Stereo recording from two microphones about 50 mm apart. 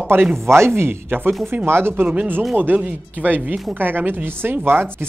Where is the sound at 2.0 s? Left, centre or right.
Right.